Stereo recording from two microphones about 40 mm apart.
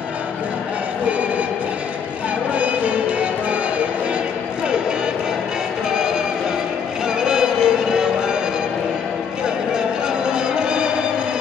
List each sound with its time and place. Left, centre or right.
2.5 s music: right
5.9 s music: centre
9.7 s music: centre